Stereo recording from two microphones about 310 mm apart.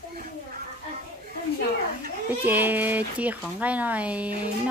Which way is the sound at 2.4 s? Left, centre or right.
Centre.